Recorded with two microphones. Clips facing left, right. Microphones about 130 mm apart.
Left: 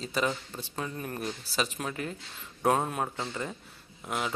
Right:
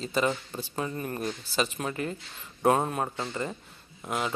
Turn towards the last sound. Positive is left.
turn(degrees=0)  # may be behind; listen again after turning